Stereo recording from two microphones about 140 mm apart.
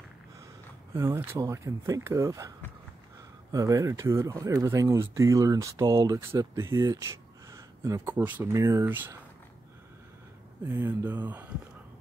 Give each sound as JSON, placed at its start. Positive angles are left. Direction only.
{"t": 0.9, "sound": "speech", "side_deg": -15}
{"t": 3.5, "sound": "speech", "side_deg": -25}
{"t": 10.6, "sound": "speech", "side_deg": -15}